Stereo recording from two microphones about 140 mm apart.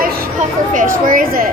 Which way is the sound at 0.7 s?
75° right (ahead or behind).